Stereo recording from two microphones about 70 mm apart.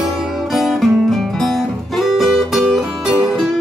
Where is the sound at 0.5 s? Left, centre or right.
Centre.